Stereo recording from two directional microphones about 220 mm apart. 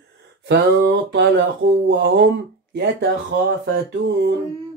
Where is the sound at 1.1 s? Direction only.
55° right (ahead or behind).